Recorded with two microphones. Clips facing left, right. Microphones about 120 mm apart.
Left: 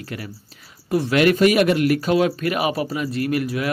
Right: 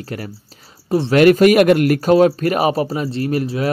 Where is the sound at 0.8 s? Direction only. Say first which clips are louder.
Right 3 dB; 30° right (ahead or behind).